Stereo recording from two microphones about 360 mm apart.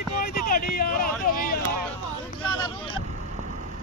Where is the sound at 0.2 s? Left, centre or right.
Left.